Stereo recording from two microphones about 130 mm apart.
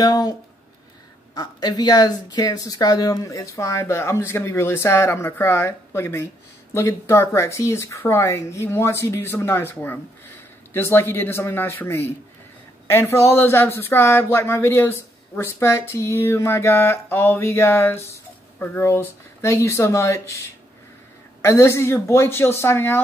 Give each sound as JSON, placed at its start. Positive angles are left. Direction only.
{"t": 0.0, "sound": "speech", "side_deg": 30}
{"t": 21.4, "sound": "speech", "side_deg": 20}